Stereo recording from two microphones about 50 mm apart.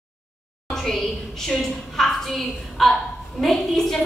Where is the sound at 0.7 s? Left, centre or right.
Centre.